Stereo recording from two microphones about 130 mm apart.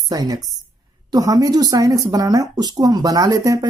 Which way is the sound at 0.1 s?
30° right (ahead or behind).